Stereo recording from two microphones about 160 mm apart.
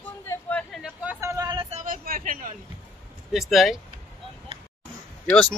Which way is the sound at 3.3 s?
Centre (ahead or behind).